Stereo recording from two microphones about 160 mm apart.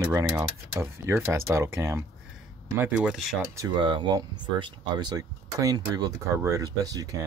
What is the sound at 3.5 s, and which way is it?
Speech, 25° right (ahead or behind).